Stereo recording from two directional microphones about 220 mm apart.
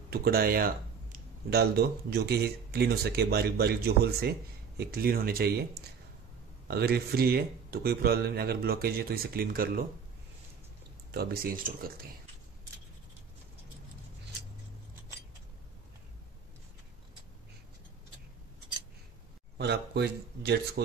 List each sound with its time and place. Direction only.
0.1 s speech: 45° right (ahead or behind)
6.7 s speech: 45° right (ahead or behind)
11.1 s speech: 45° right (ahead or behind)
19.6 s speech: 50° right (ahead or behind)